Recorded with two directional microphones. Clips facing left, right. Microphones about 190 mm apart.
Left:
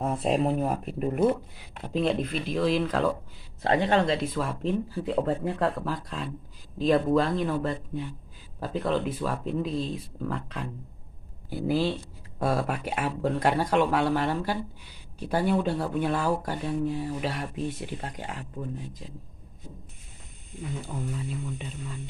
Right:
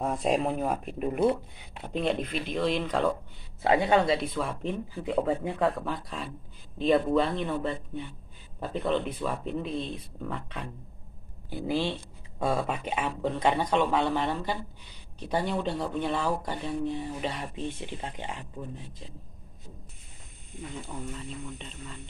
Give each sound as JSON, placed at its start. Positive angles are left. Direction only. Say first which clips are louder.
{"t": 0.0, "sound": "speech", "louder": "left 1 dB", "side_deg": 0}
{"t": 3.6, "sound": "speech", "louder": "even", "side_deg": -10}
{"t": 20.8, "sound": "speech", "louder": "left 4 dB", "side_deg": 5}